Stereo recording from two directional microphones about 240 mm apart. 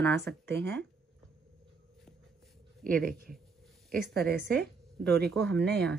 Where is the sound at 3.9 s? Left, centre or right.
Right.